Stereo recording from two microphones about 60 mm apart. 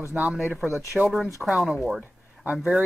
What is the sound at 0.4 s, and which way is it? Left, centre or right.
Speech, centre.